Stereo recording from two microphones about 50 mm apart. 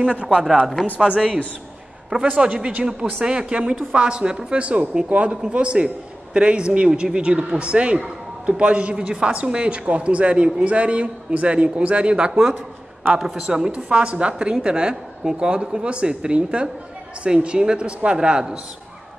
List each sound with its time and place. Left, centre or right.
0.0 s a man's voice: right
2.2 s a man's voice: right
12.3 s a woman's voice: centre
13.7 s a man's voice: right